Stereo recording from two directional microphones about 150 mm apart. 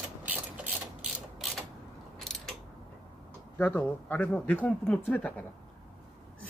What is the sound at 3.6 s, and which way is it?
Speech, 15° left (ahead or behind).